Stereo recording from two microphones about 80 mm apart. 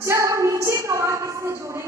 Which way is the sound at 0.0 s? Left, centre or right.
Right.